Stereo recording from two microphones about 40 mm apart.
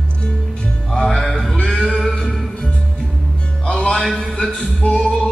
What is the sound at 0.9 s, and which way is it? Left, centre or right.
Music, centre.